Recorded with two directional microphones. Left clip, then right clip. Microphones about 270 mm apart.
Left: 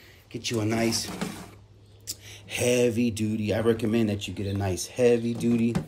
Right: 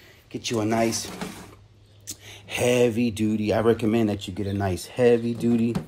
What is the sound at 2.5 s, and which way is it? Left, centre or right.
Speech, centre.